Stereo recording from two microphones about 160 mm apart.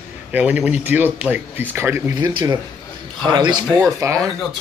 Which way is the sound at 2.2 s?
30° right (ahead or behind).